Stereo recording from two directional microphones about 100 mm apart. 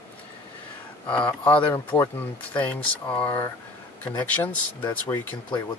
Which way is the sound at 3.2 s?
25° left (ahead or behind).